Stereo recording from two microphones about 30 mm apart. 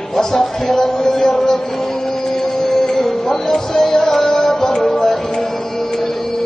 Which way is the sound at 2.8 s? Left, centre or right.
Centre.